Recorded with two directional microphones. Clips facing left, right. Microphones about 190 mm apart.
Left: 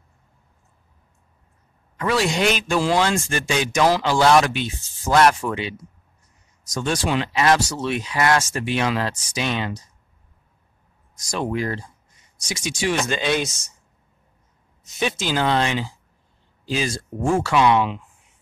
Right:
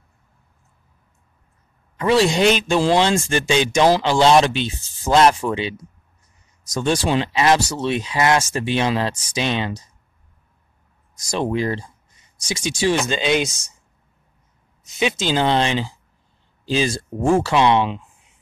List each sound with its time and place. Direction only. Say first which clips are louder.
2.0 s speech: right 5 dB; 25° right (ahead or behind)
11.2 s speech: right 3 dB; 25° right (ahead or behind)
15.0 s speech: right 3 dB; 20° right (ahead or behind)